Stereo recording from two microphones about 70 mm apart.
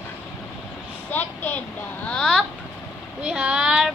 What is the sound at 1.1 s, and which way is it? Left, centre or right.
Speech, left.